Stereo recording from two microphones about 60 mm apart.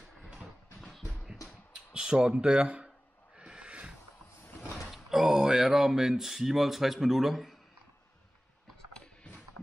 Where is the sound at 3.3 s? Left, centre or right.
Centre.